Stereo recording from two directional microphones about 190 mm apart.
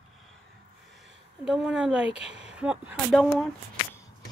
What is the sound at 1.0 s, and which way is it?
Speech, centre (ahead or behind).